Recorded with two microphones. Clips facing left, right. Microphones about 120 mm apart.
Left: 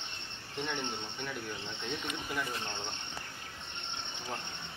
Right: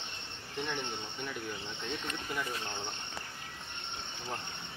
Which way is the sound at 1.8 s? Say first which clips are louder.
Even; centre (ahead or behind).